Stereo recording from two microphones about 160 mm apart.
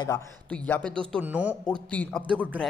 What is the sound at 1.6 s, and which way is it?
Speech, 10° left (ahead or behind).